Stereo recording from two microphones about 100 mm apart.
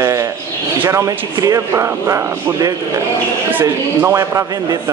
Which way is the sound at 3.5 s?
20° right (ahead or behind).